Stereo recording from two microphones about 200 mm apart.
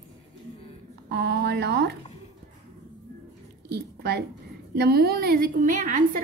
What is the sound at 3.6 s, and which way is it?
A woman's voice, 55° right (ahead or behind).